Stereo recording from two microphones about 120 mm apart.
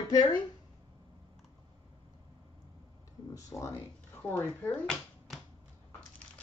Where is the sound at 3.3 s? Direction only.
25° left (ahead or behind).